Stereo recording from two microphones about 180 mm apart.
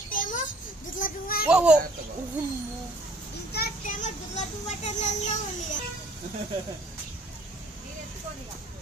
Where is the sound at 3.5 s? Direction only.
60° left (ahead or behind).